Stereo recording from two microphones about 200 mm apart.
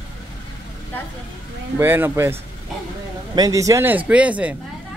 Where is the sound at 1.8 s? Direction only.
10° right (ahead or behind).